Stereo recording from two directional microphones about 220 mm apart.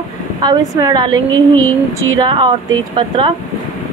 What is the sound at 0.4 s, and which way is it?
A woman's voice, 15° right (ahead or behind).